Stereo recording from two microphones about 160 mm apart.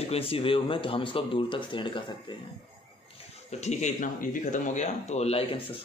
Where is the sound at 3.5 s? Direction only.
45° left (ahead or behind).